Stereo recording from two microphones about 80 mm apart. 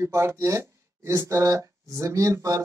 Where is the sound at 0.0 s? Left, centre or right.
Right.